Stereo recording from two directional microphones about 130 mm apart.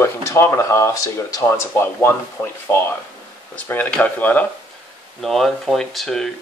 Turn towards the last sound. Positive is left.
turn(degrees=5)  # may be behind; listen again after turning